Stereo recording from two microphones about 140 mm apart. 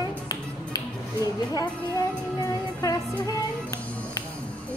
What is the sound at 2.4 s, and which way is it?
Music, 25° left (ahead or behind).